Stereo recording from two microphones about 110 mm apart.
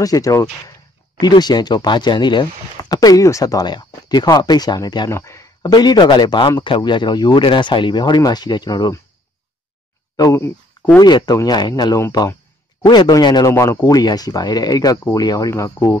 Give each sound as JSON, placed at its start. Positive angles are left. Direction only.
{"t": 0.0, "sound": "speech", "side_deg": 30}
{"t": 5.1, "sound": "a sound", "side_deg": 25}
{"t": 5.7, "sound": "speech", "side_deg": 40}
{"t": 10.1, "sound": "speech", "side_deg": 30}
{"t": 13.5, "sound": "speech", "side_deg": 25}